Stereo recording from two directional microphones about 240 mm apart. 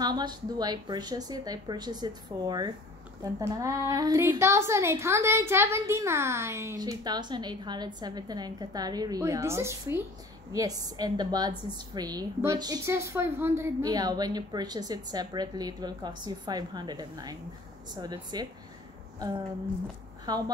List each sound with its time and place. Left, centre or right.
0.0 s speech: centre
19.1 s a sound: centre
20.2 s speech: centre